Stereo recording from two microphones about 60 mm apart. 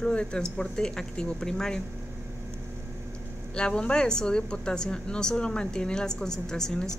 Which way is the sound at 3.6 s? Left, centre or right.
Centre.